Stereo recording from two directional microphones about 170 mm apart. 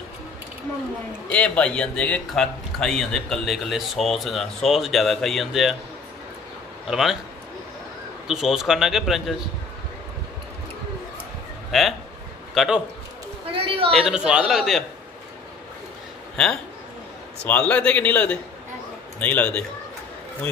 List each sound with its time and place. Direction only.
1.3 s speech: 5° left (ahead or behind)
6.9 s speech: centre (ahead or behind)
8.3 s speech: centre (ahead or behind)
11.7 s speech: centre (ahead or behind)
13.5 s a sound: 30° right (ahead or behind)
13.9 s speech: 5° right (ahead or behind)
17.5 s a man's voice: 10° left (ahead or behind)